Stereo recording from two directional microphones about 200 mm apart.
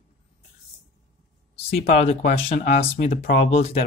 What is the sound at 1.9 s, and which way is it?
Speech, 30° left (ahead or behind).